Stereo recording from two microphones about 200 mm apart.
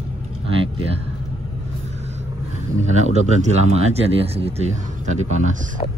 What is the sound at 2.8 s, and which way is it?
Speech, 35° right (ahead or behind).